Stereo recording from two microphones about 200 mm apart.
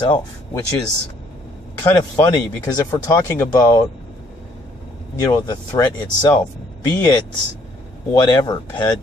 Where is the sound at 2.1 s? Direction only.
15° left (ahead or behind).